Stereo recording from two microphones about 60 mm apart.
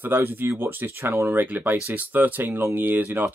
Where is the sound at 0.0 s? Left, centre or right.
Right.